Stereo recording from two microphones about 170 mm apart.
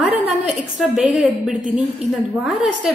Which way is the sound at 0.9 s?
10° right (ahead or behind).